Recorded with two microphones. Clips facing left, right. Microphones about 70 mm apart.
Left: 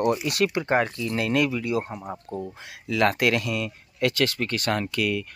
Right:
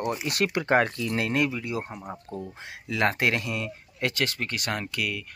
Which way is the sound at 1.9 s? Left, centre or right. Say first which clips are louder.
Left 3 dB; centre.